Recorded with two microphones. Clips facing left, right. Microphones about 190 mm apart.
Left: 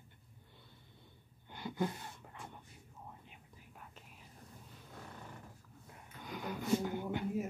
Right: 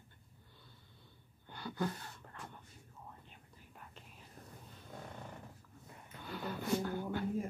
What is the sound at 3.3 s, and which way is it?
Whispering, 5° left (ahead or behind).